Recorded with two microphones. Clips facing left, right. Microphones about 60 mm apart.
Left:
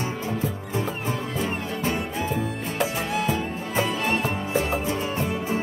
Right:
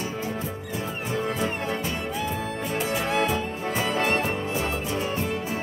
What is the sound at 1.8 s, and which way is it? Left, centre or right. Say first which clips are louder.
Music: left 3 dB; left.